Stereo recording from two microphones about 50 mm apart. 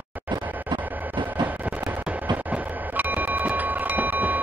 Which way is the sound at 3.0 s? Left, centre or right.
Right.